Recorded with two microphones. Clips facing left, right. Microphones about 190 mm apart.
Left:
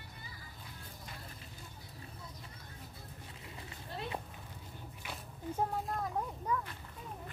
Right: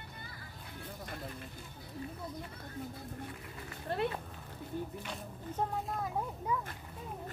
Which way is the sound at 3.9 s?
65° right (ahead or behind).